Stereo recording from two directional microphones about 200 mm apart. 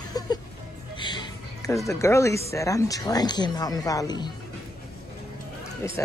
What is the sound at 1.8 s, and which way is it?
Speech, 15° left (ahead or behind).